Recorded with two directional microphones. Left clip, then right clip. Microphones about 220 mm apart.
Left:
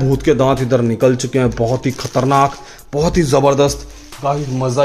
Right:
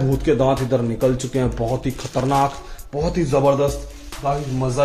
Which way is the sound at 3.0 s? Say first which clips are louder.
Left 5 dB; 40° left (ahead or behind).